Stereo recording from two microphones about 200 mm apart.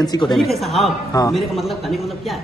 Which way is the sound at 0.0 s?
20° left (ahead or behind).